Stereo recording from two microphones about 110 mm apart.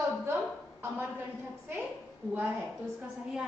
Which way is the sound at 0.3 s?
20° right (ahead or behind).